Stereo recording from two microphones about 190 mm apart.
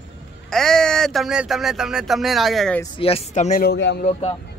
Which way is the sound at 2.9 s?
30° left (ahead or behind).